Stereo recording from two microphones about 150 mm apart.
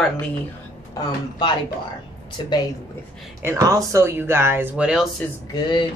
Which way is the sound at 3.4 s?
20° right (ahead or behind).